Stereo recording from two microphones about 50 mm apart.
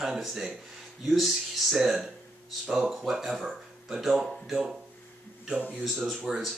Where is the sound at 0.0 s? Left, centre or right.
Centre.